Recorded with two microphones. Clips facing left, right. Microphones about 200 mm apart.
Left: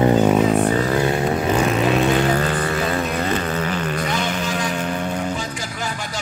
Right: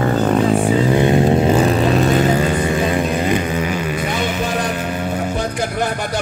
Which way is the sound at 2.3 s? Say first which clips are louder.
Right 4 dB; 10° right (ahead or behind).